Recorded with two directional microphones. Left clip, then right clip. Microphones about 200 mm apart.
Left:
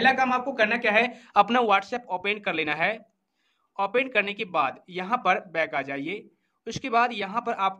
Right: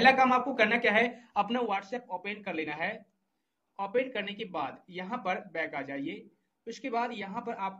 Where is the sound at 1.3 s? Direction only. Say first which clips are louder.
Left 10 dB; 45° left (ahead or behind).